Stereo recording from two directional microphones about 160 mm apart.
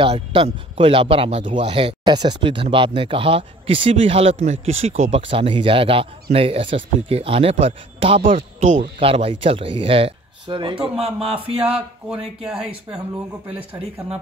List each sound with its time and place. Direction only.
0.0 s speech: 30° right (ahead or behind)
11.1 s a sound: 5° right (ahead or behind)
12.4 s speech: 5° right (ahead or behind)